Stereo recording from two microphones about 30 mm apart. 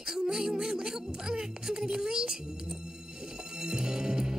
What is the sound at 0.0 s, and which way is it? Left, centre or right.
Music, right.